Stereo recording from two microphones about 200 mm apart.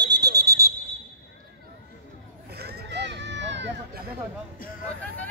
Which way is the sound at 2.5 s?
55° right (ahead or behind).